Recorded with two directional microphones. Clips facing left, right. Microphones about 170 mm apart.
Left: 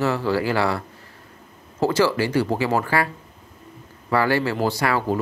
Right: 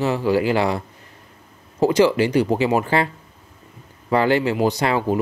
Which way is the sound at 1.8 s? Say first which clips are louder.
Right 4 dB; 20° right (ahead or behind).